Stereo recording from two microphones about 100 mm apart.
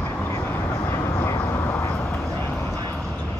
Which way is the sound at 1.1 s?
25° left (ahead or behind).